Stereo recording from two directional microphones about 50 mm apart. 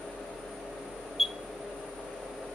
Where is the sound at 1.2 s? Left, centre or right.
Centre.